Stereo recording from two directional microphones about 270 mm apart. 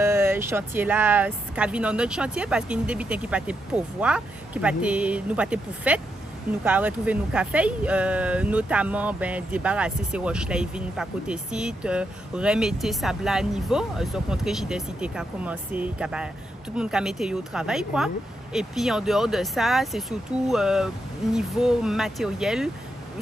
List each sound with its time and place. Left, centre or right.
0.0 s speech: centre